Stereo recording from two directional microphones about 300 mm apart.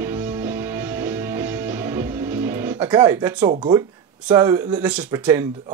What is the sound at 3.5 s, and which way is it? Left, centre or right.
Speech, centre.